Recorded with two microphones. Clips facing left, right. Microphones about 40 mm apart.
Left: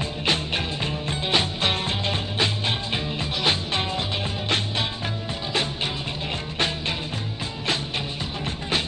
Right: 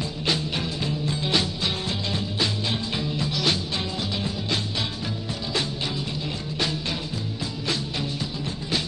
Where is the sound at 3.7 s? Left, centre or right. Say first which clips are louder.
Left 3 dB; left.